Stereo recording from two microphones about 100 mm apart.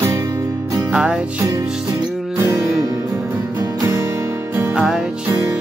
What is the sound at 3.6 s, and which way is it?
Music, 30° right (ahead or behind).